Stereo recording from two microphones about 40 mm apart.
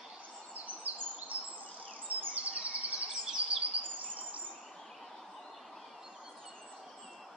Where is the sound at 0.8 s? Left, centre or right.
Right.